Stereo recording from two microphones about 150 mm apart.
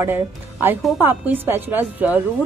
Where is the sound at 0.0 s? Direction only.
15° right (ahead or behind).